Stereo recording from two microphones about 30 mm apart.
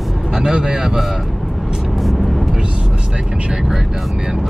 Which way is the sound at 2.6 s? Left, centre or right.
Right.